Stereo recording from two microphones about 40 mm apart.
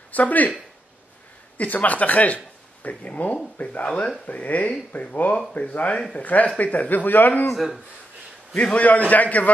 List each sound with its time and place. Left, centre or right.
0.1 s speech: left
1.6 s a man's voice: left
7.5 s speech: centre
8.7 s a man's voice: left